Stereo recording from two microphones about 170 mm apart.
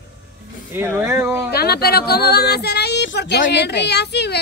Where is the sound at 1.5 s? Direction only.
65° left (ahead or behind).